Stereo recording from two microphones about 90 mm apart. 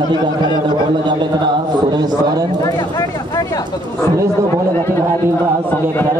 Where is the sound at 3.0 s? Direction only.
40° left (ahead or behind).